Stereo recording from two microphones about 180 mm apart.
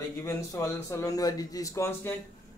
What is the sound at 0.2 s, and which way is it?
A man's voice, 15° left (ahead or behind).